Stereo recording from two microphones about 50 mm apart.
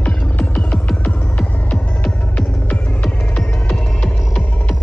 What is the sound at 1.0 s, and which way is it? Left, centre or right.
Throbbing, left.